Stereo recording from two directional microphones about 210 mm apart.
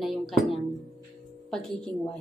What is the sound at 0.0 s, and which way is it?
A woman's voice, centre (ahead or behind).